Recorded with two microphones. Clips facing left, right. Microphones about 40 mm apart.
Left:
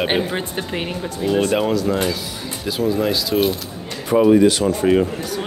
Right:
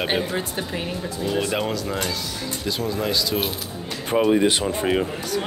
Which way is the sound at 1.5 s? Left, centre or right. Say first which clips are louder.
Left 6 dB; centre.